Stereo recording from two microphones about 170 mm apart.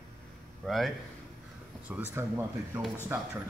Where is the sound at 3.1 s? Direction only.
15° right (ahead or behind).